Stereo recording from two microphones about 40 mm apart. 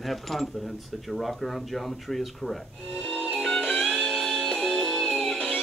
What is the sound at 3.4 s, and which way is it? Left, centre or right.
Music, centre.